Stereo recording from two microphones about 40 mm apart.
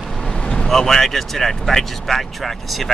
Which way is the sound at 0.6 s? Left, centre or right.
Centre.